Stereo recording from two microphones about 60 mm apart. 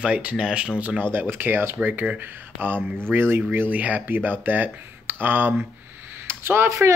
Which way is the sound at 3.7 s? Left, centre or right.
Right.